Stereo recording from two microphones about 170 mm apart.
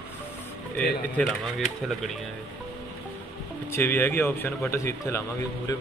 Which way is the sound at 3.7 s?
10° left (ahead or behind).